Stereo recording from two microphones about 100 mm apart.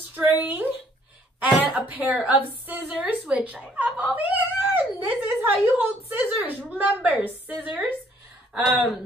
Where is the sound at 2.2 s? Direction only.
15° right (ahead or behind).